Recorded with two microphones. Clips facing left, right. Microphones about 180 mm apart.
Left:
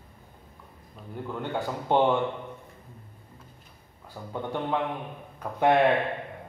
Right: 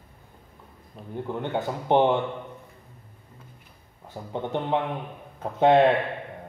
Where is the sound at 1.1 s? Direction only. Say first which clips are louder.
Right 3 dB; 20° right (ahead or behind).